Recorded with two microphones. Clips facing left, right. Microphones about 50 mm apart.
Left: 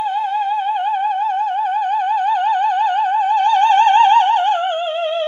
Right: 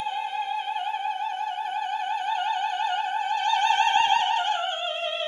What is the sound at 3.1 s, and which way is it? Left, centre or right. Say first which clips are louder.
Music: left 10 dB; left.